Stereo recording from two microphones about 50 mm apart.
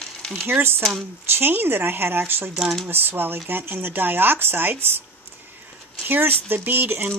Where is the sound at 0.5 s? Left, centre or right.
Right.